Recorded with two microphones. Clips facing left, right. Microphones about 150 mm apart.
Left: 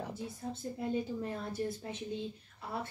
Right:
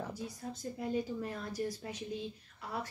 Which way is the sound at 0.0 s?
25° left (ahead or behind).